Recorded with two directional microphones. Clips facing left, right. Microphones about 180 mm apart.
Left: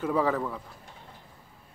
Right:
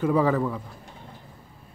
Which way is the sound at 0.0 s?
Centre (ahead or behind).